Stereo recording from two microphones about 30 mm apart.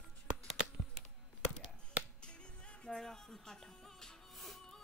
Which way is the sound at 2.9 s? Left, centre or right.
Centre.